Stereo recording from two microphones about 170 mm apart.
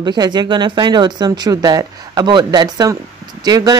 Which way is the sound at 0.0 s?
25° right (ahead or behind).